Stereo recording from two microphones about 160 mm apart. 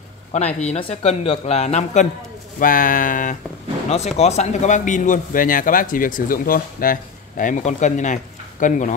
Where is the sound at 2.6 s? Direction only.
60° left (ahead or behind).